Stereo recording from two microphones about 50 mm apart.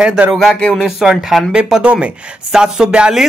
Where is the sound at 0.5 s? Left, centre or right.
Centre.